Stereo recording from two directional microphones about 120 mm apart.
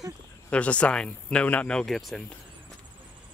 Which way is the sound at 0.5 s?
10° left (ahead or behind).